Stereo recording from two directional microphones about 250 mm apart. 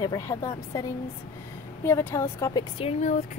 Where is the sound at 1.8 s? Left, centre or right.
Centre.